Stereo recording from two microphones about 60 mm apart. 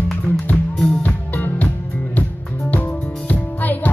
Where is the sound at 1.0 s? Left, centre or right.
Left.